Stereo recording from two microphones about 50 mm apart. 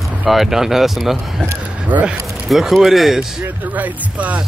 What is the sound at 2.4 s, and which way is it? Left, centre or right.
Speech, centre.